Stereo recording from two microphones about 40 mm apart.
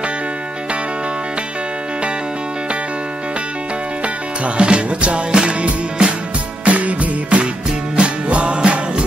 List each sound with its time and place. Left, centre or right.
4.6 s music: right
6.6 s music: right